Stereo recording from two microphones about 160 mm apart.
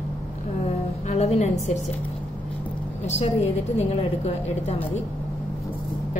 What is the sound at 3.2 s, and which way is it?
Speech, 45° left (ahead or behind).